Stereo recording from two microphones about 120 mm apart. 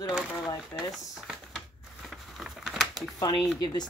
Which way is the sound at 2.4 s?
Centre (ahead or behind).